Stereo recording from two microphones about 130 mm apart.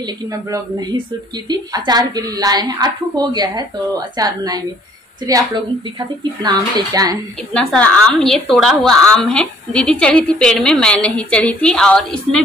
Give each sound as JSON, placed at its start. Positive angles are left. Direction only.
{"t": 0.0, "sound": "a woman's voice", "side_deg": -25}
{"t": 5.9, "sound": "a woman's voice", "side_deg": -35}
{"t": 7.5, "sound": "a woman's voice", "side_deg": 10}